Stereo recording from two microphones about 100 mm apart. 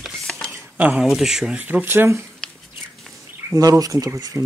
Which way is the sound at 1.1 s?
5° right (ahead or behind).